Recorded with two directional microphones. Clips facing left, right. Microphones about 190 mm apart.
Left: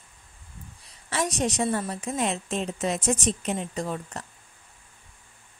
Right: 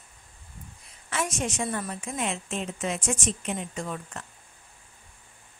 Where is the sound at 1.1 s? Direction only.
35° left (ahead or behind).